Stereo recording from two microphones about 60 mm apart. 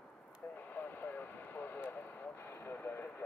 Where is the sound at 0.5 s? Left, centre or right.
Left.